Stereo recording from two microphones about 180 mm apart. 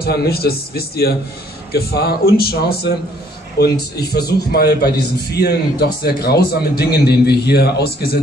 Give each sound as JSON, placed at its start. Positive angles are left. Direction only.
{"t": 0.0, "sound": "a man's voice", "side_deg": 60}